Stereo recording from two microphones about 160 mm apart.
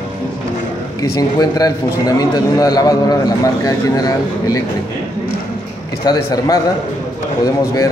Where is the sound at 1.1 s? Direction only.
25° left (ahead or behind).